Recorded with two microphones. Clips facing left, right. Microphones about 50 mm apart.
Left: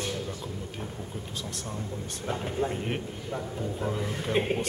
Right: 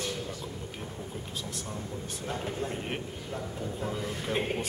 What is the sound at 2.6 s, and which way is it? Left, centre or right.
Speech, left.